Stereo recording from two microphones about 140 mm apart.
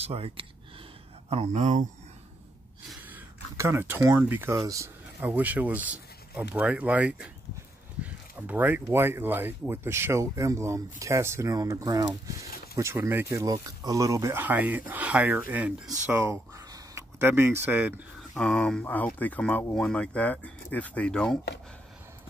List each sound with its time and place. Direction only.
0.0 s speech: 45° right (ahead or behind)
3.1 s speech: 20° right (ahead or behind)
12.7 s speech: 20° right (ahead or behind)
18.3 s speech: 5° left (ahead or behind)